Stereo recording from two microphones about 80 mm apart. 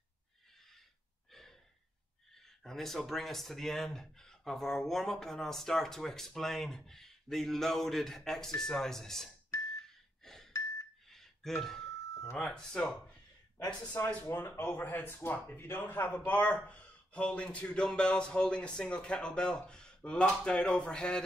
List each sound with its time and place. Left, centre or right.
1.3 s gasp: centre
2.3 s speech: centre
10.2 s a sound: centre
11.1 s music: centre
12.1 s a sound: left
12.4 s speech: centre
13.9 s speech: left; by 21.2 s centre